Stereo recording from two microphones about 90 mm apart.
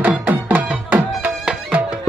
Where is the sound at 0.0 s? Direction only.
15° right (ahead or behind).